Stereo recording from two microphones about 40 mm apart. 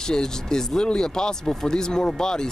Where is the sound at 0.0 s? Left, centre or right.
Centre.